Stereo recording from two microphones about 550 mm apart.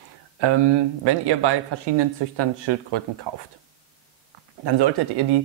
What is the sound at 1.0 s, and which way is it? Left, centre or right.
Speech, right.